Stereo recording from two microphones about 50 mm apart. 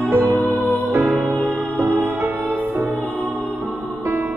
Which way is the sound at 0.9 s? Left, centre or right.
Right.